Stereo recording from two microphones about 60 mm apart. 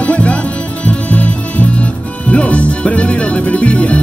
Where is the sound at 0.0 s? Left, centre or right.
Left.